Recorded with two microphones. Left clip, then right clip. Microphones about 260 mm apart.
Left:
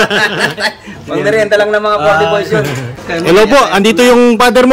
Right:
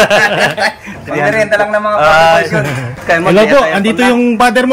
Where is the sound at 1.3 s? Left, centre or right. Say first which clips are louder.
Left 3 dB; centre.